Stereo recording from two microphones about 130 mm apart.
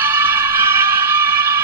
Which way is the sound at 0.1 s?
20° right (ahead or behind).